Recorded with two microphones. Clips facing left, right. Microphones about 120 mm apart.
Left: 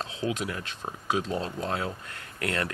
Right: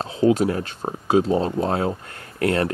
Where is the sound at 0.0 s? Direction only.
35° right (ahead or behind).